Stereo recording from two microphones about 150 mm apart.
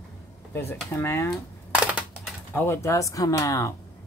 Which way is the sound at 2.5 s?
15° left (ahead or behind).